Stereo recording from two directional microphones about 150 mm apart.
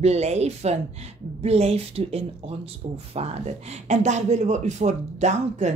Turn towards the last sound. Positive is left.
turn(degrees=-50)  # may be behind; listen again after turning